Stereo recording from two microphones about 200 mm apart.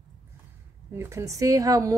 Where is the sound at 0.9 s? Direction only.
15° right (ahead or behind).